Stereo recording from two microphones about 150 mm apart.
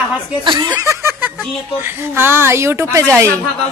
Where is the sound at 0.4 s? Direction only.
30° right (ahead or behind).